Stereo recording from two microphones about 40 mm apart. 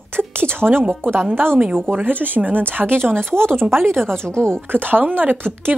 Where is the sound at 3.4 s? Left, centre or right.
Right.